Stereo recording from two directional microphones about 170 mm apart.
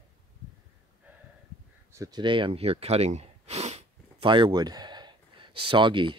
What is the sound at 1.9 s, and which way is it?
Speech, 20° right (ahead or behind).